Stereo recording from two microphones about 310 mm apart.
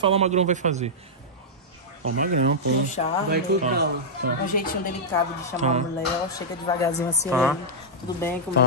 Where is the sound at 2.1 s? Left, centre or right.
Right.